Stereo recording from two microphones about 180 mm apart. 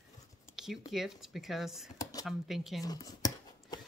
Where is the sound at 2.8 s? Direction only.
20° left (ahead or behind).